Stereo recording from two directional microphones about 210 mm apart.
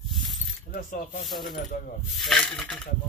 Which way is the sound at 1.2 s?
Centre (ahead or behind).